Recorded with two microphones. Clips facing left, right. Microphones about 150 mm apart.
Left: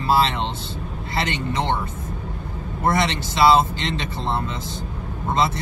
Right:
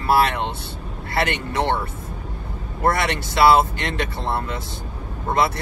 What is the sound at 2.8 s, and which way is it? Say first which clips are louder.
Speech: even; 20° left (ahead or behind).